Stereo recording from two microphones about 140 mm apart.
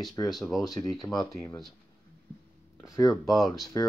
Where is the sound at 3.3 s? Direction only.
Centre (ahead or behind).